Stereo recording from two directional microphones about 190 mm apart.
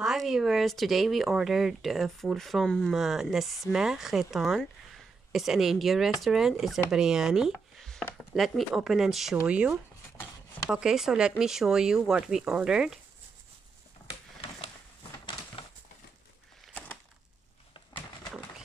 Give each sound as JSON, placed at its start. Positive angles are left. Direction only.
{"t": 0.0, "sound": "speech", "side_deg": 0}
{"t": 8.0, "sound": "chopping", "side_deg": 0}
{"t": 9.5, "sound": "speech", "side_deg": -5}
{"t": 15.6, "sound": "a sound", "side_deg": 30}